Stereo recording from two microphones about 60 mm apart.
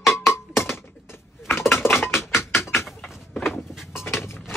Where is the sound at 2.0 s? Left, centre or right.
Left.